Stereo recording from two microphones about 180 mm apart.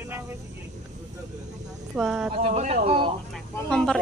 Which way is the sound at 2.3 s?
35° right (ahead or behind).